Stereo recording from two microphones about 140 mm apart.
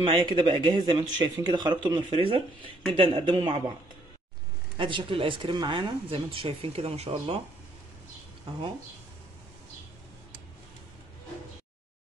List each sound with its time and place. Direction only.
0.0 s speech: 35° right (ahead or behind)
4.7 s speech: 35° right (ahead or behind)
8.5 s speech: 40° right (ahead or behind)